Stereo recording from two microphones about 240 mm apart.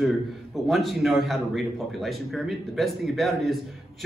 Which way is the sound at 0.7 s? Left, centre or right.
Centre.